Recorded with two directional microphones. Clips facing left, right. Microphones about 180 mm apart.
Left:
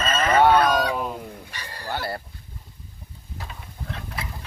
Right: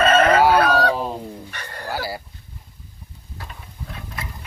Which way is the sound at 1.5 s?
60° right (ahead or behind).